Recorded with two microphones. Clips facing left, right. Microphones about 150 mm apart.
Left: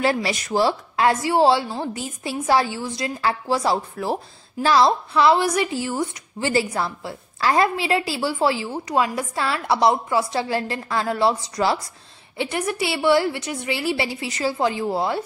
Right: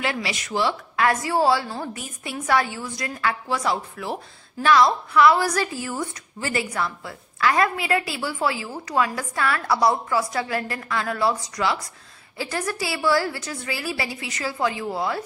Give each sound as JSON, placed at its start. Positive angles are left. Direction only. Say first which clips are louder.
{"t": 0.0, "sound": "a woman's voice", "louder": "left 6 dB", "side_deg": 40}
{"t": 12.4, "sound": "a woman's voice", "louder": "left 3 dB", "side_deg": 20}